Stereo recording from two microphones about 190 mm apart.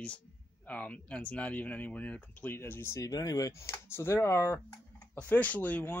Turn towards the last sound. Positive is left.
turn(degrees=10)  # may be behind; listen again after turning